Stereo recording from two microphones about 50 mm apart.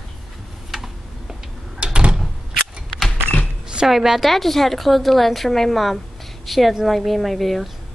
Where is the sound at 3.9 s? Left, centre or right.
Centre.